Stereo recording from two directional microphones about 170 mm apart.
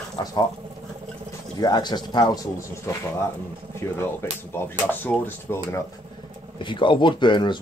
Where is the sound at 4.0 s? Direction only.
15° left (ahead or behind).